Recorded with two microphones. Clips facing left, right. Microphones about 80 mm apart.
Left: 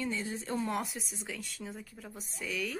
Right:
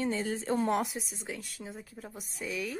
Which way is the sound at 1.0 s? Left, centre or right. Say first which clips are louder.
Right 2 dB; centre.